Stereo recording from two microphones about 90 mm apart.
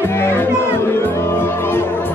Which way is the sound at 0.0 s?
30° left (ahead or behind).